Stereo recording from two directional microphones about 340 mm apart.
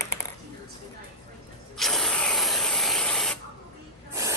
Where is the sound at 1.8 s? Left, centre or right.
Centre.